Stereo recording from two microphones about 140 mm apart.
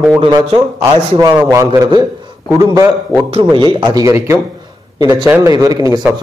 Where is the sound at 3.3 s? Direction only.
35° right (ahead or behind).